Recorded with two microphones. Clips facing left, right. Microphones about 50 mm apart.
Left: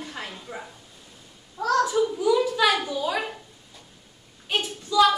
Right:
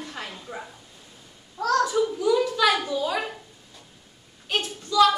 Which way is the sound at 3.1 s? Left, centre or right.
Centre.